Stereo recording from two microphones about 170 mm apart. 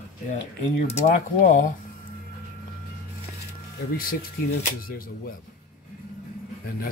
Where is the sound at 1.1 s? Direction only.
50° left (ahead or behind).